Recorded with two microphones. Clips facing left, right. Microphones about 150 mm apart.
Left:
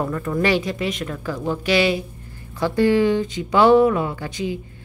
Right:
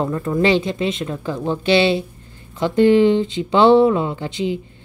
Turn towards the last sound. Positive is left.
turn(degrees=-25)  # may be behind; listen again after turning